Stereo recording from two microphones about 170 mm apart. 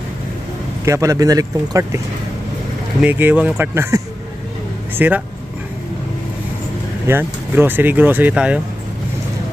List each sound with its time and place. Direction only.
0.8 s speech: 20° right (ahead or behind)
3.0 s speech: 10° right (ahead or behind)
7.1 s speech: 10° right (ahead or behind)